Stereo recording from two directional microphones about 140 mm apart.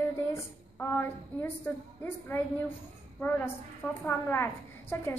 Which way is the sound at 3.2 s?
10° left (ahead or behind).